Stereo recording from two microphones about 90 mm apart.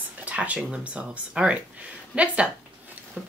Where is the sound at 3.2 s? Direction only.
15° right (ahead or behind).